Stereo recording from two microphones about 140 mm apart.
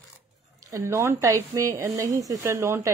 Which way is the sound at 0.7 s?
20° right (ahead or behind).